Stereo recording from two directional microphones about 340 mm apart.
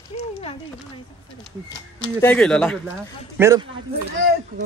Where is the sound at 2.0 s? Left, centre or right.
Centre.